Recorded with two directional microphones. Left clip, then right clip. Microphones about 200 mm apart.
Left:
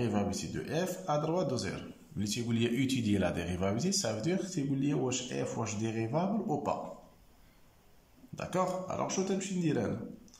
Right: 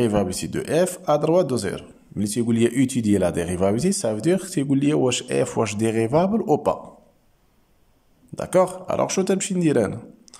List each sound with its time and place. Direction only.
0.0 s speech: 45° right (ahead or behind)
8.4 s speech: 40° right (ahead or behind)